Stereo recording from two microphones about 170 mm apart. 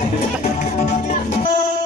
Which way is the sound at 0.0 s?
45° left (ahead or behind).